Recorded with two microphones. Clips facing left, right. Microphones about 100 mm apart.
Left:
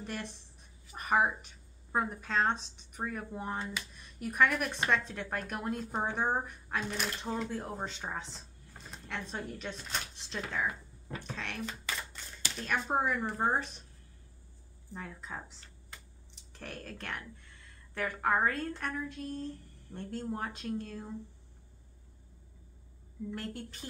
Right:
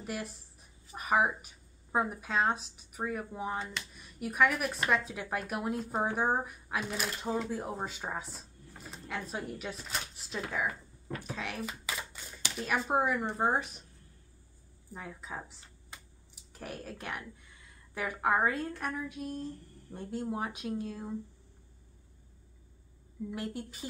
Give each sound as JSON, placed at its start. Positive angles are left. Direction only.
{"t": 0.0, "sound": "speech", "side_deg": -5}
{"t": 14.9, "sound": "speech", "side_deg": -10}
{"t": 15.9, "sound": "a sound", "side_deg": -15}
{"t": 16.3, "sound": "speech", "side_deg": -10}
{"t": 23.3, "sound": "speech", "side_deg": -10}